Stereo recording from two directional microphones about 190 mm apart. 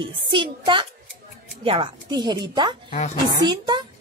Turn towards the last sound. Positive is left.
turn(degrees=-25)  # may be behind; listen again after turning